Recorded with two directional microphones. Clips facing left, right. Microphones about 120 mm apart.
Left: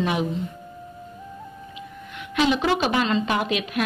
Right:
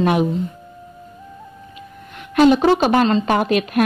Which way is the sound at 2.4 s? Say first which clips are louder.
Right 8 dB; 45° right (ahead or behind).